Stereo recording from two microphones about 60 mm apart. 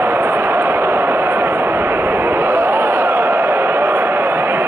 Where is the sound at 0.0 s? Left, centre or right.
Right.